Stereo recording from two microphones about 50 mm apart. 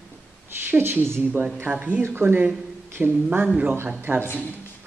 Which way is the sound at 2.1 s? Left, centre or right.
Right.